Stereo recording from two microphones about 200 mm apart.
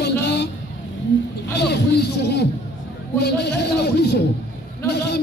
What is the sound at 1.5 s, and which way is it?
A man's voice, 55° left (ahead or behind).